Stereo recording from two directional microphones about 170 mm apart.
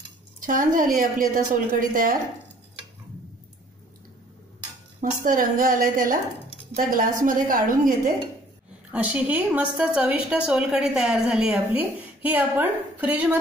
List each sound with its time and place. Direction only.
0.4 s a woman's voice: 50° right (ahead or behind)
5.2 s a woman's voice: 55° right (ahead or behind)
8.9 s a woman's voice: 10° right (ahead or behind)